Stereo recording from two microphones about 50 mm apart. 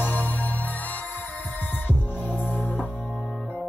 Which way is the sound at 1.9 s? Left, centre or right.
Left.